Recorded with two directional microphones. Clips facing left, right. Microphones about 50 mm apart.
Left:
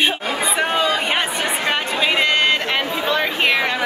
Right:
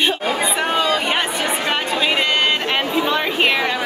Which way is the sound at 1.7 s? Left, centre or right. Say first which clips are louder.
Left 1 dB; centre.